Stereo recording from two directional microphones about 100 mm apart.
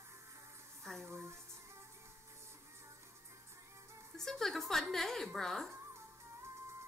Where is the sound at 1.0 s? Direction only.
25° right (ahead or behind).